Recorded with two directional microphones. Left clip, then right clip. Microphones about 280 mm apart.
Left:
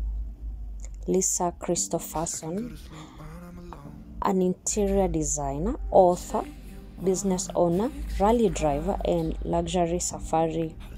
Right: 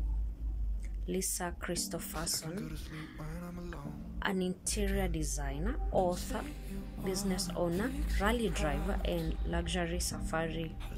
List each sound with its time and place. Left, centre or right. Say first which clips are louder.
1.0 s a woman's voice: left 12 dB; centre
2.3 s speech: left 6 dB; centre
3.2 s music: even; centre
4.2 s a woman's voice: left 10 dB; centre
5.9 s speech: left 13 dB; centre
7.2 s a woman's voice: left 10 dB; centre
7.7 s speech: left 8 dB; centre
8.2 s a woman's voice: left 11 dB; centre
8.7 s speech: left 10 dB; centre
9.5 s a woman's voice: left 11 dB; centre